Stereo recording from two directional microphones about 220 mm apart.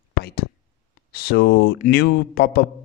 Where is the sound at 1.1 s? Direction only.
45° left (ahead or behind).